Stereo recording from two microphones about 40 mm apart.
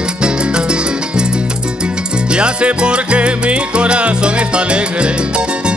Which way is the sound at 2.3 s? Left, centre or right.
Right.